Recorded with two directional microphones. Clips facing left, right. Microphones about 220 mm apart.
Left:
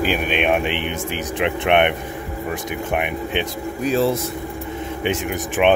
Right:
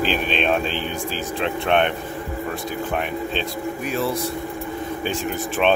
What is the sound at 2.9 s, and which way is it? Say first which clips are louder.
Speech: left 4 dB; 15° left (ahead or behind).